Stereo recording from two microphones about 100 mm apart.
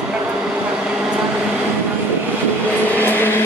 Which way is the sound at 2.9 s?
20° left (ahead or behind).